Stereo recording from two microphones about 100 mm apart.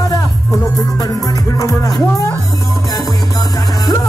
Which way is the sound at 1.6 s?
35° left (ahead or behind).